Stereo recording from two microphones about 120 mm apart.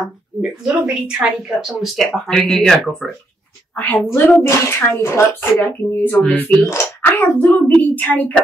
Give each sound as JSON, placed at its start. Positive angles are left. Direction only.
{"t": 0.4, "sound": "speech", "side_deg": -5}
{"t": 3.7, "sound": "a woman's voice", "side_deg": 15}